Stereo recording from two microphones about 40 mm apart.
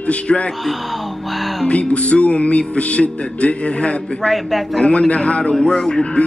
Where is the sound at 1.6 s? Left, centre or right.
Left.